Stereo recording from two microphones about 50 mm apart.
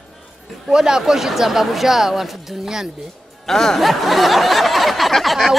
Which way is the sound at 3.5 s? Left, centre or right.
Centre.